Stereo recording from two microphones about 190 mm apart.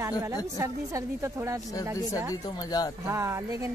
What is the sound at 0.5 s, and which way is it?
Speech, 15° right (ahead or behind).